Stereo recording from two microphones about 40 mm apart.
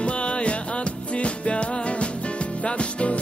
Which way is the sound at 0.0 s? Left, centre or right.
Left.